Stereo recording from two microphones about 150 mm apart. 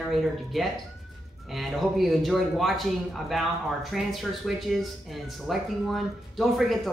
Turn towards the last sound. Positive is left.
turn(degrees=0)  # may be behind; listen again after turning